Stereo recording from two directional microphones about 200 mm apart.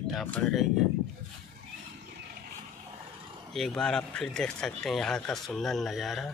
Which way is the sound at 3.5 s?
5° left (ahead or behind).